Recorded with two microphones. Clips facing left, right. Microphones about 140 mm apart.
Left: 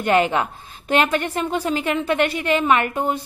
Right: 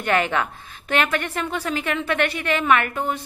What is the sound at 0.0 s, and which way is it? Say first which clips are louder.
A woman's voice: left 3 dB; 30° left (ahead or behind).